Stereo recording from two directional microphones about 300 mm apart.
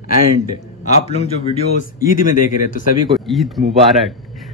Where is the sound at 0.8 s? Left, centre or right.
Left.